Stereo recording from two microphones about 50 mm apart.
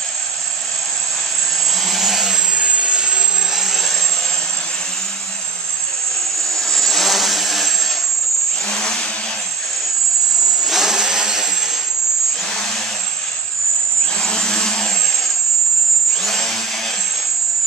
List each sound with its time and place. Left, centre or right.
1.9 s vehicle: centre
2.5 s vehicle: right
3.5 s vehicle: centre
6.3 s vehicle: centre
8.6 s vehicle: centre
10.6 s chainsaw: centre
14.2 s vehicle: centre
16.2 s a sound: centre